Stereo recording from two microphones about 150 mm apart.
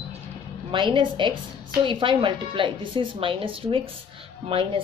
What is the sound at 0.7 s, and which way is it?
Speech, 35° right (ahead or behind).